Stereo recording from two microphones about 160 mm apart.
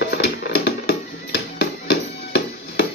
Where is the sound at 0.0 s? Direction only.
90° left.